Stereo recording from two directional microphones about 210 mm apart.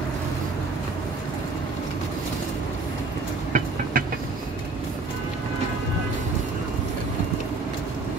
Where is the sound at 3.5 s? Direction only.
45° right (ahead or behind).